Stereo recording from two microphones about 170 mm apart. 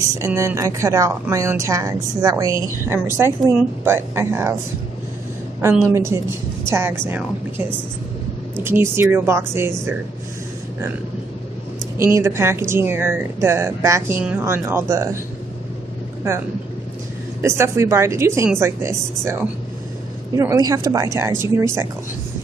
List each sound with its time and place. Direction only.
0.2 s a woman's voice: 15° right (ahead or behind)
5.6 s a woman's voice: 15° right (ahead or behind)
8.6 s a woman's voice: 15° right (ahead or behind)
12.0 s a woman's voice: 15° right (ahead or behind)
17.4 s a woman's voice: 15° right (ahead or behind)